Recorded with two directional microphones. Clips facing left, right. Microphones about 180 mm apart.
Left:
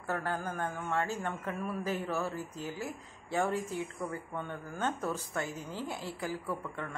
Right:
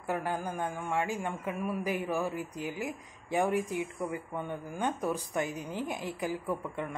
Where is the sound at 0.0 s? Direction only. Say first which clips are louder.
Right 2 dB; 15° right (ahead or behind).